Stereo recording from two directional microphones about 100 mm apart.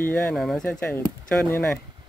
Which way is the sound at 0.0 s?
20° left (ahead or behind).